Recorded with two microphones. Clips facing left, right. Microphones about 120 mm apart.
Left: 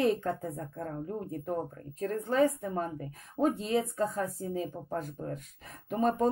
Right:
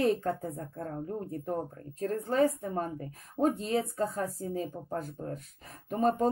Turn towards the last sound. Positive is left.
turn(degrees=-35)  # may be behind; listen again after turning